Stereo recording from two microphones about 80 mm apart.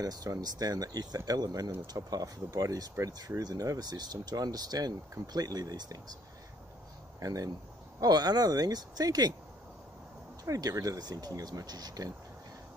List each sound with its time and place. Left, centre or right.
0.0 s speech: right
7.2 s speech: right
10.4 s speech: right